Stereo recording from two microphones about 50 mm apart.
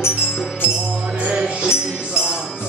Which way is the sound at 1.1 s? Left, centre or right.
Right.